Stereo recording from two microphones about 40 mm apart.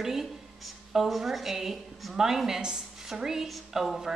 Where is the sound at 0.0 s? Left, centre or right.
Centre.